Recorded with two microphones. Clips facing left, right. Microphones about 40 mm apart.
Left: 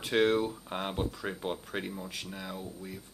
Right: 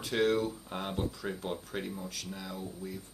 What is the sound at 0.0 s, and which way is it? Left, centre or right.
Speech, left.